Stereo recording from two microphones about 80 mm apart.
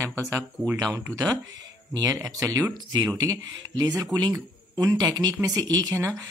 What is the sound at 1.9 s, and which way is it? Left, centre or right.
Speech, right.